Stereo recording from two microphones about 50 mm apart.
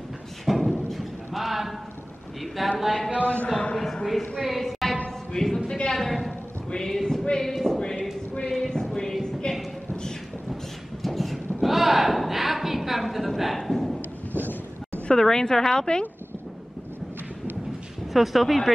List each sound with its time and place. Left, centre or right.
0.5 s music: centre
2.8 s speech: centre
3.2 s a man's voice: left
3.5 s a sound: centre
5.7 s a woman's voice: centre
6.7 s a sound: centre
11.0 s a sound: centre
15.0 s a woman's voice: centre
18.1 s speech: centre